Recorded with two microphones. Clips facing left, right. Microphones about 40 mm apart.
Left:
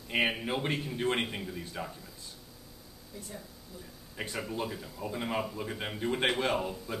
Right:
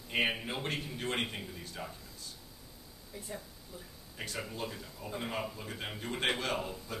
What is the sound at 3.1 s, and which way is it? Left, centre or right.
Speech, centre.